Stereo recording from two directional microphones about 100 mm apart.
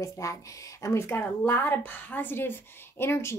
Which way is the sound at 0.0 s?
35° left (ahead or behind).